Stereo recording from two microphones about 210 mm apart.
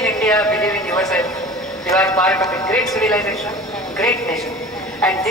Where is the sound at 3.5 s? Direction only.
Centre (ahead or behind).